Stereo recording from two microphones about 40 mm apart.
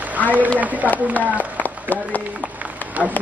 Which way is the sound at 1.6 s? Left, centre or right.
Left.